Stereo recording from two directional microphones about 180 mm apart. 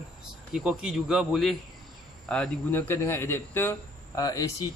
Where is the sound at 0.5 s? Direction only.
5° right (ahead or behind).